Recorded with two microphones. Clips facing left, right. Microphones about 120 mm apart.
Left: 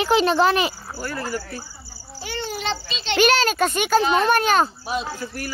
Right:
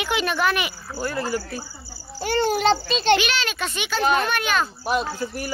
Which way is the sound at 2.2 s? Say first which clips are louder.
Right 9 dB; 50° right (ahead or behind).